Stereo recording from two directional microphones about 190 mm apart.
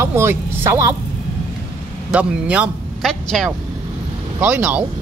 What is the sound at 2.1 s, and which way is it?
A man's voice, 5° right (ahead or behind).